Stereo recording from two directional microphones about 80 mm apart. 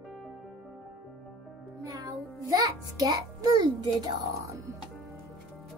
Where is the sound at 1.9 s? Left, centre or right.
Right.